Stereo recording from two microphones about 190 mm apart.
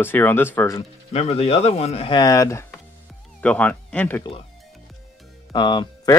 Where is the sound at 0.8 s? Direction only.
30° left (ahead or behind); by 4.2 s 10° left (ahead or behind).